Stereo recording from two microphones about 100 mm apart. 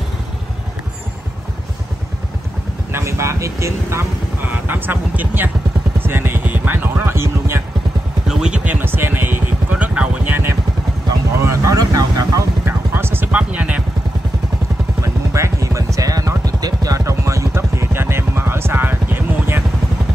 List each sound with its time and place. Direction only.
2.9 s vehicle: 25° right (ahead or behind)
4.5 s speech: 20° right (ahead or behind)
8.3 s vehicle: 10° right (ahead or behind)
11.4 s vehicle: 35° right (ahead or behind)
12.6 s vehicle: 20° right (ahead or behind)
15.0 s a sound: 30° right (ahead or behind)